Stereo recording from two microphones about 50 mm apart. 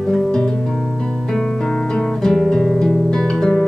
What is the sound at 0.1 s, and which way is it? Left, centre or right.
Music, centre.